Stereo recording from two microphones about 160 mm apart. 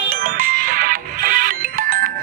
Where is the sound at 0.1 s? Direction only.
65° right (ahead or behind).